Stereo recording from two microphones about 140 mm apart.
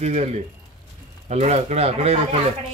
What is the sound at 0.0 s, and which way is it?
Speech, 50° right (ahead or behind).